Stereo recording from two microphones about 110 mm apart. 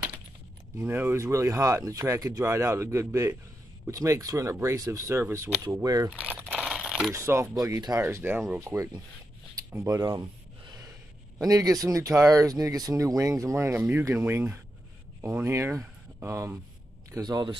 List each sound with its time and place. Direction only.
0.7 s speech: 20° right (ahead or behind)
6.0 s speech: 15° right (ahead or behind)
6.5 s keys jangling: 10° right (ahead or behind)
7.2 s speech: 25° right (ahead or behind)
11.3 s speech: 30° right (ahead or behind)
17.2 s speech: 35° right (ahead or behind)